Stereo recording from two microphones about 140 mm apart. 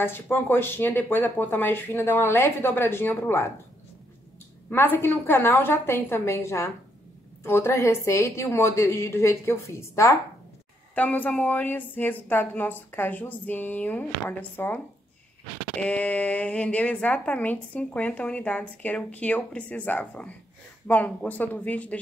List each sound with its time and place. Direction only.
0.0 s a woman's voice: 15° left (ahead or behind)
4.6 s a woman's voice: 15° left (ahead or behind)
11.0 s a woman's voice: 10° left (ahead or behind)
15.8 s a woman's voice: 10° left (ahead or behind)